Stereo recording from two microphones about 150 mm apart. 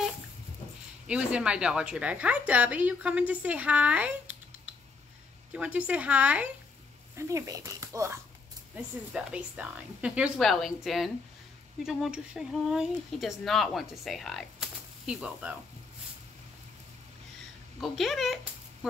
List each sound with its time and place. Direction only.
1.0 s a woman's voice: 5° right (ahead or behind)
5.5 s a woman's voice: 10° right (ahead or behind)
7.2 s a woman's voice: 20° right (ahead or behind)
17.7 s speech: centre (ahead or behind)